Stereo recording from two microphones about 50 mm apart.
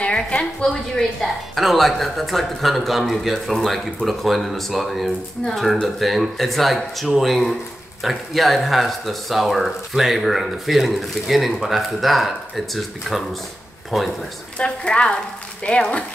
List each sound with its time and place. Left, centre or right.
0.0 s a woman's voice: left
1.2 s speech: centre
14.6 s a woman's voice: centre